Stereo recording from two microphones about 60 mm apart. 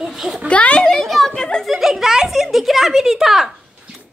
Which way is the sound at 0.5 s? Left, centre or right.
Centre.